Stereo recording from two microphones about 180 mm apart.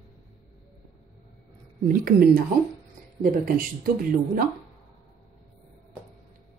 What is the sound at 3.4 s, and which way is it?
A woman's voice, 50° right (ahead or behind).